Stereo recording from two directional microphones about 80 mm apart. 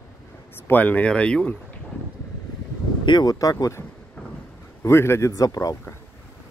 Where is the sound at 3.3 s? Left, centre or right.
Left.